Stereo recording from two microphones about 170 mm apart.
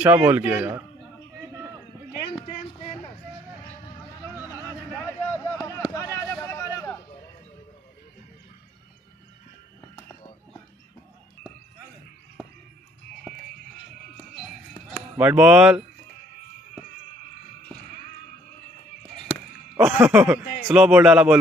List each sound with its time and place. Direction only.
0.0 s a man's voice: 10° right (ahead or behind)
4.2 s horse: 10° right (ahead or behind)
4.9 s a sound: 5° left (ahead or behind)
5.6 s a sound: 20° left (ahead or behind)
14.9 s speech: 10° right (ahead or behind)
19.8 s speech: 5° right (ahead or behind)